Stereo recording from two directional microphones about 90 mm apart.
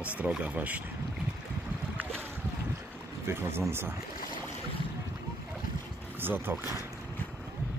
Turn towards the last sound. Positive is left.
turn(degrees=-25)  # may be behind; listen again after turning